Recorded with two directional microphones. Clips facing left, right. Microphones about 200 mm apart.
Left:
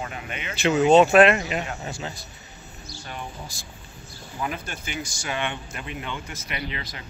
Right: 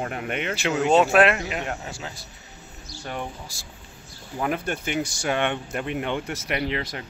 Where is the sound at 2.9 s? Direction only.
55° right (ahead or behind).